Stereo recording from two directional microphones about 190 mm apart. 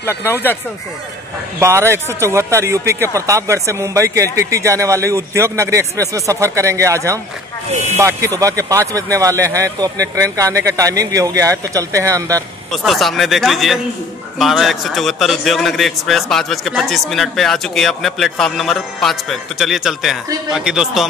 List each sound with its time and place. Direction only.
0.0 s speech: 15° left (ahead or behind)
1.6 s a man's voice: 15° right (ahead or behind)
7.7 s speech: 35° right (ahead or behind)
8.0 s a man's voice: 15° right (ahead or behind)
12.7 s a man's voice: centre (ahead or behind)